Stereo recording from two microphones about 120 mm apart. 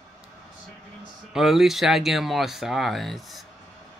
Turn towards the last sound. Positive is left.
turn(degrees=0)  # may be behind; listen again after turning